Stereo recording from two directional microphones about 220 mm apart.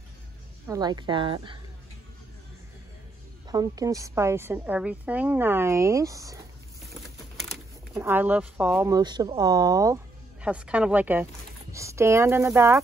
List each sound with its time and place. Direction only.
0.7 s speech: 20° right (ahead or behind)
3.4 s a woman's voice: 15° right (ahead or behind)
6.9 s typing: centre (ahead or behind)
7.9 s a woman's voice: 10° right (ahead or behind)
10.4 s a woman's voice: 5° right (ahead or behind)